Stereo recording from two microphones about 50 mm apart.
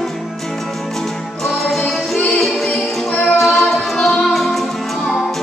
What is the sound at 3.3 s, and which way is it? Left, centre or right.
A capella, centre.